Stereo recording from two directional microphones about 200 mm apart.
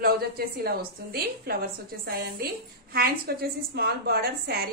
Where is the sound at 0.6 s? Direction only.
50° right (ahead or behind).